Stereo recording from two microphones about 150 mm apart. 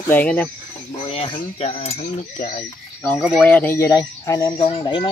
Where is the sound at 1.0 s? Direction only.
40° left (ahead or behind).